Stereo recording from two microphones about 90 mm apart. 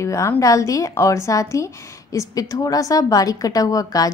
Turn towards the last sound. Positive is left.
turn(degrees=40)  # may be behind; listen again after turning